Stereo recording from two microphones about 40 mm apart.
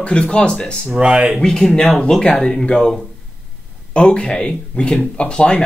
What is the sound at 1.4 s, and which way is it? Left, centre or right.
Speech, centre.